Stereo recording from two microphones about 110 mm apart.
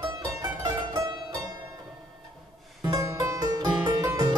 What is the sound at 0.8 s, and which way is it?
Pizzicato, 40° right (ahead or behind).